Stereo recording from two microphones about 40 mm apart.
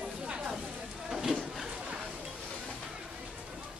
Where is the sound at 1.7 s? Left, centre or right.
Right.